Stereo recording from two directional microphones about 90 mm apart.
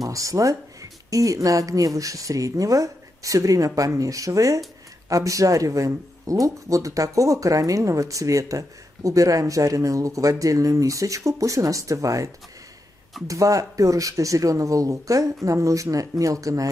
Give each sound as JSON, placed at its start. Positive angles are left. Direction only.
{"t": 0.0, "sound": "speech", "side_deg": -40}
{"t": 13.3, "sound": "speech", "side_deg": -40}